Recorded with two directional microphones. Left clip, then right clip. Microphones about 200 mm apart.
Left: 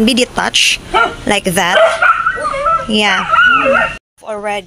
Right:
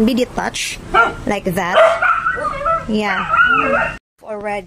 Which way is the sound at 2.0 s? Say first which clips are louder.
Left 5 dB; 35° left (ahead or behind).